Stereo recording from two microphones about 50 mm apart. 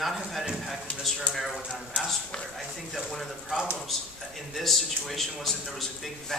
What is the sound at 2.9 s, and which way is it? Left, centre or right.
Speech, centre.